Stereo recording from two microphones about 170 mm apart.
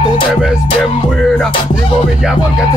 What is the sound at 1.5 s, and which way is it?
Music, 30° left (ahead or behind).